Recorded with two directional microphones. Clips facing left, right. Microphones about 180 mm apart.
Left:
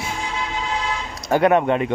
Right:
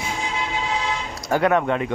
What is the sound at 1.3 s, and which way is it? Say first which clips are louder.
Speech: left 3 dB; 20° left (ahead or behind).